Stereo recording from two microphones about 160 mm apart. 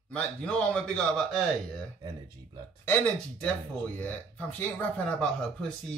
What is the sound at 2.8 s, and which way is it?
Speech, 10° left (ahead or behind).